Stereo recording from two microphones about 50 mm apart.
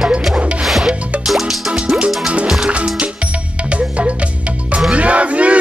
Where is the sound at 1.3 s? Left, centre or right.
Centre.